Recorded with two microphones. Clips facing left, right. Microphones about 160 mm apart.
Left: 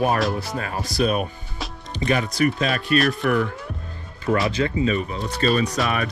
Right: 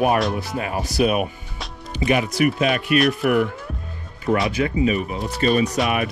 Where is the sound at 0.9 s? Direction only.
10° right (ahead or behind).